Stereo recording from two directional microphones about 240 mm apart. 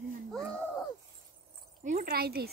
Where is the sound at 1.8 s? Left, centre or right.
Right.